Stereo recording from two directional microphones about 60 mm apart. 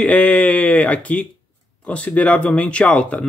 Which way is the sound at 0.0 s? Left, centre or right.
Left.